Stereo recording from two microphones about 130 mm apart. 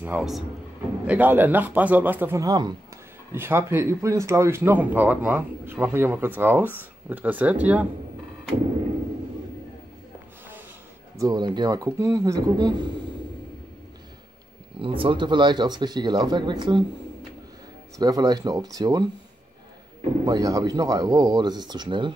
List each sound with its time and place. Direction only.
0.0 s speech: 10° right (ahead or behind)
3.3 s speech: 15° right (ahead or behind)
11.1 s speech: 30° right (ahead or behind)
14.8 s speech: 40° right (ahead or behind)
17.9 s speech: 30° right (ahead or behind)
20.2 s speech: 25° right (ahead or behind)